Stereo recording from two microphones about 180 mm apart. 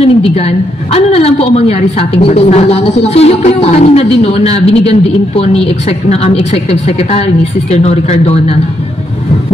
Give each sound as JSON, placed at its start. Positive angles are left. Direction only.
{"t": 0.0, "sound": "a woman's voice", "side_deg": 35}